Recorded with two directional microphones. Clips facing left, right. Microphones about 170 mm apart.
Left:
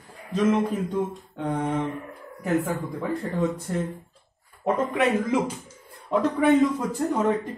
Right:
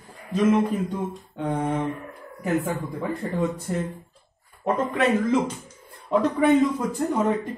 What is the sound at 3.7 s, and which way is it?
Speech, 10° right (ahead or behind).